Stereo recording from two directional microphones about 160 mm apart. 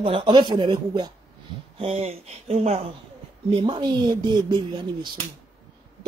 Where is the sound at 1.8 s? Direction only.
40° right (ahead or behind).